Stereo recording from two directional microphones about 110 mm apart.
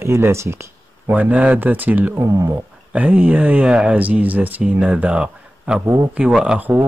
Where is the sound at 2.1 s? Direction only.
30° right (ahead or behind).